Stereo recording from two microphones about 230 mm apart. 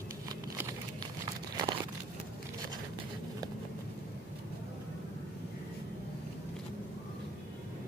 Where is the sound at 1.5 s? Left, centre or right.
Centre.